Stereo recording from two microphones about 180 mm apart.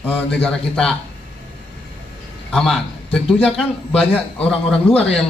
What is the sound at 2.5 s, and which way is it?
A man's voice, 5° left (ahead or behind).